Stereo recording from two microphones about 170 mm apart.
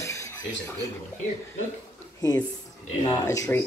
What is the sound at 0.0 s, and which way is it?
Music, 15° left (ahead or behind).